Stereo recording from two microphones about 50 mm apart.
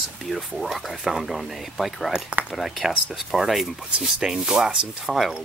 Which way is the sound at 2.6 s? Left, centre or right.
Centre.